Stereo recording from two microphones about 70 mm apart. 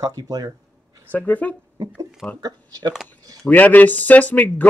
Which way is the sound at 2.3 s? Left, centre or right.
Right.